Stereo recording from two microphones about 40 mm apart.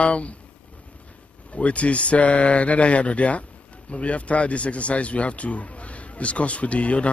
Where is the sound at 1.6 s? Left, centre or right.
Left.